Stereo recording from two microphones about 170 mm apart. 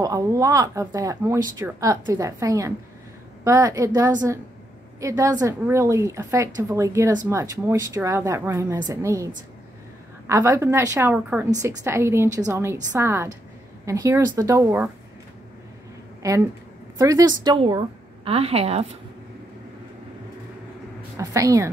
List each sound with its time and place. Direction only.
0.0 s a woman's voice: 20° right (ahead or behind)
16.2 s a woman's voice: 20° right (ahead or behind); by 18.9 s 35° right (ahead or behind)
21.2 s a woman's voice: 20° right (ahead or behind)